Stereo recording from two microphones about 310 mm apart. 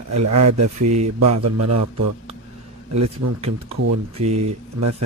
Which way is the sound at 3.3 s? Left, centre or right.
Centre.